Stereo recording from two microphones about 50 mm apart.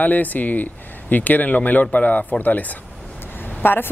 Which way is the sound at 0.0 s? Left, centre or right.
Left.